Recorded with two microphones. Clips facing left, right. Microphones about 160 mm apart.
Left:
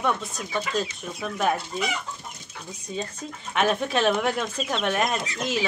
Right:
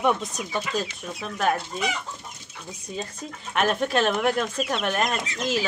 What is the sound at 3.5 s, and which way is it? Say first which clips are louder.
Speech: right 1 dB; centre (ahead or behind).